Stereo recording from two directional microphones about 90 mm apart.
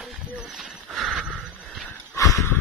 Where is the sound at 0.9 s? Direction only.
Centre (ahead or behind).